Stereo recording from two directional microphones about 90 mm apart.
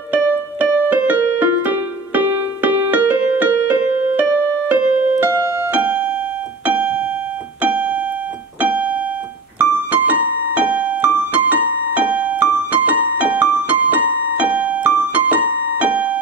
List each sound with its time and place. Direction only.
0.1 s music: 15° right (ahead or behind)
5.4 s keyboard: 35° right (ahead or behind)
5.7 s music: 20° right (ahead or behind)
6.6 s keyboard: 15° right (ahead or behind)
15.8 s music: 15° right (ahead or behind)